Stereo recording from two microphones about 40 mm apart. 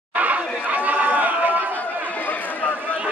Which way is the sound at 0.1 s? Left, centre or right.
Right.